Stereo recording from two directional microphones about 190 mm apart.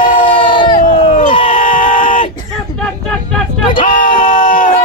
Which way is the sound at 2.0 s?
45° left (ahead or behind).